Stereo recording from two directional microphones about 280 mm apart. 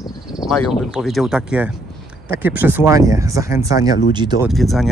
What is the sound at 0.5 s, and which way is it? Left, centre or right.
Speech, centre.